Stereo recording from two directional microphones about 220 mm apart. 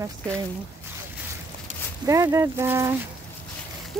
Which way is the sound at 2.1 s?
15° right (ahead or behind).